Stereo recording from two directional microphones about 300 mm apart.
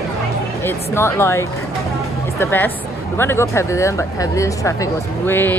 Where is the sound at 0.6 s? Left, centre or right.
Centre.